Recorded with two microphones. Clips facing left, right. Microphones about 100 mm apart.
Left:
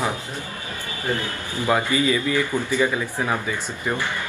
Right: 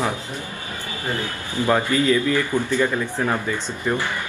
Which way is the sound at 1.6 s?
10° left (ahead or behind).